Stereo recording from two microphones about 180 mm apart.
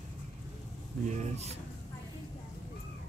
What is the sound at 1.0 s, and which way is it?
Speech, 40° right (ahead or behind).